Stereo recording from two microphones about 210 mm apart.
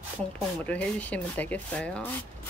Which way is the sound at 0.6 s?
5° left (ahead or behind).